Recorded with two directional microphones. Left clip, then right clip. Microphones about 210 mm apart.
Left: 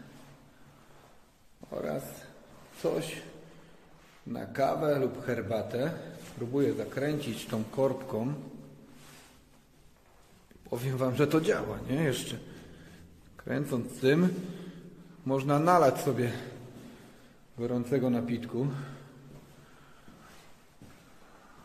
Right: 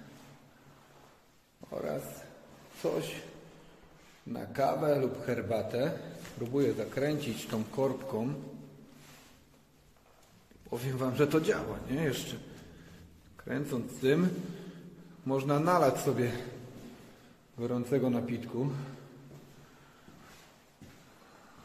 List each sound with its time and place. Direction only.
1.7 s a sound: 15° left (ahead or behind)
2.8 s a man's voice: 20° left (ahead or behind)
4.3 s a man's voice: 15° left (ahead or behind)
7.5 s a man's voice: 10° left (ahead or behind)
10.7 s a man's voice: 15° left (ahead or behind)
13.4 s a man's voice: 20° left (ahead or behind)
17.6 s a man's voice: 10° left (ahead or behind)